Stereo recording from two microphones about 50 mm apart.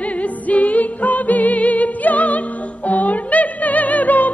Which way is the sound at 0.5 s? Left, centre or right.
Left.